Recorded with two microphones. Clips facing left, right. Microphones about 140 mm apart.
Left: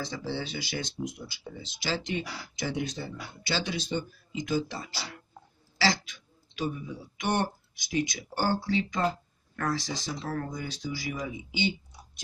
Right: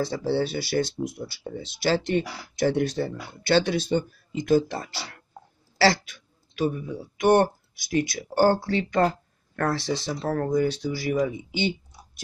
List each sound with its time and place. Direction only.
0.0 s speech: 55° right (ahead or behind)